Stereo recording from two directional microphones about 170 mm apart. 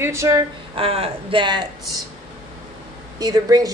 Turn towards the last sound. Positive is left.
turn(degrees=-20)  # may be behind; listen again after turning